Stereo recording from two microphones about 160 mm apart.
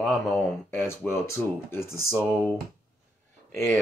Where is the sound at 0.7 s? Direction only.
15° left (ahead or behind).